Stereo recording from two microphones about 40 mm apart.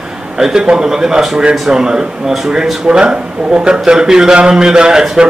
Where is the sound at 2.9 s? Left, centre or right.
Right.